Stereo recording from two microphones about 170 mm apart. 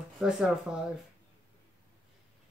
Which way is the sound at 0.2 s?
5° right (ahead or behind).